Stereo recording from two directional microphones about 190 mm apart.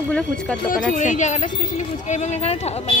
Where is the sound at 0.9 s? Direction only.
40° left (ahead or behind).